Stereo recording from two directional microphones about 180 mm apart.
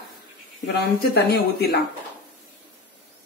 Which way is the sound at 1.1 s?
65° left (ahead or behind).